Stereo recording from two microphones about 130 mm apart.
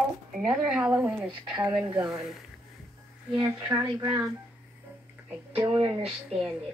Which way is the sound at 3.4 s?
20° right (ahead or behind).